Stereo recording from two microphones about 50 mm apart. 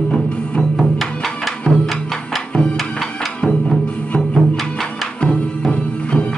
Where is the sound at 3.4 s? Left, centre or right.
Centre.